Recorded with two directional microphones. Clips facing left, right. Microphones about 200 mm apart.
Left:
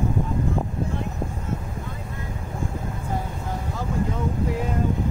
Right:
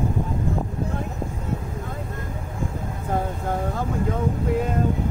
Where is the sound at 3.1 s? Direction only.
55° right (ahead or behind).